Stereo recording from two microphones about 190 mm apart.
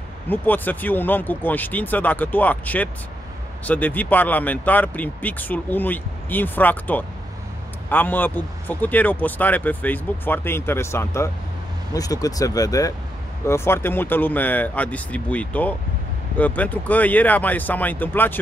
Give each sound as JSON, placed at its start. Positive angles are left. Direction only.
{"t": 0.3, "sound": "speech", "side_deg": 10}